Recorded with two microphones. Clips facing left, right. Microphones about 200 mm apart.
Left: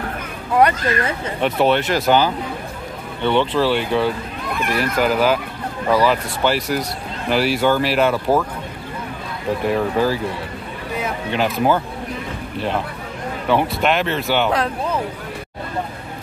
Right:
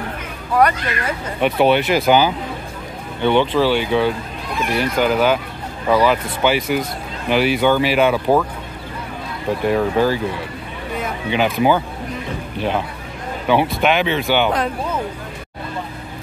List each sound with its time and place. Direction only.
0.6 s speech: 25° left (ahead or behind)
1.4 s speech: 5° right (ahead or behind)
9.7 s speech: centre (ahead or behind)